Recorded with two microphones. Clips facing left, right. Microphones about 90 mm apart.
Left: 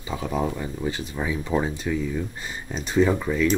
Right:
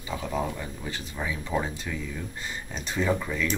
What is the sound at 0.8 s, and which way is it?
Speech, 25° left (ahead or behind).